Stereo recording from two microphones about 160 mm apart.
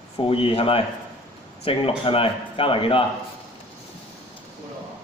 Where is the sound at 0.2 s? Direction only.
35° left (ahead or behind).